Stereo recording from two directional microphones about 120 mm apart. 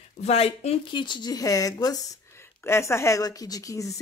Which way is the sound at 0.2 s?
60° left (ahead or behind).